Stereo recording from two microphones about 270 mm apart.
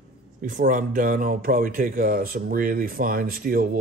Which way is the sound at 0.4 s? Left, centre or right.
Right.